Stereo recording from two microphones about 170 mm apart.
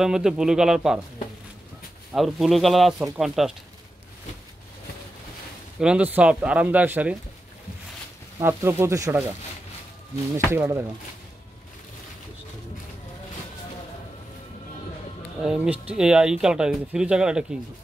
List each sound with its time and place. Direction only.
0.0 s speech: 5° right (ahead or behind)
2.1 s speech: centre (ahead or behind)
5.8 s speech: 5° right (ahead or behind)
8.4 s speech: 15° right (ahead or behind)
10.3 s speech: 15° right (ahead or behind)
15.4 s speech: 5° right (ahead or behind)